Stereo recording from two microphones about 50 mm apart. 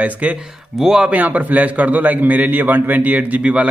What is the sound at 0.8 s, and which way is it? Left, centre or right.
Speech, centre.